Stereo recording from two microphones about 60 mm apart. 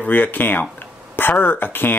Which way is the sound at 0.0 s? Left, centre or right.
Left.